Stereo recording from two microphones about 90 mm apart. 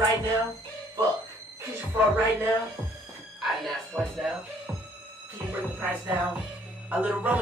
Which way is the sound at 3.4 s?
Centre (ahead or behind).